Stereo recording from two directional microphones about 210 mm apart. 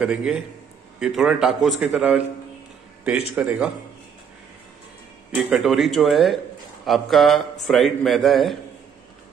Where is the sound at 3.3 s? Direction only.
5° right (ahead or behind).